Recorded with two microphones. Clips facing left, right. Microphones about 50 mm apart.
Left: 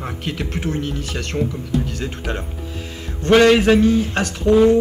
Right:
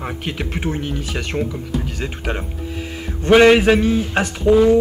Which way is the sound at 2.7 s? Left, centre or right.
Centre.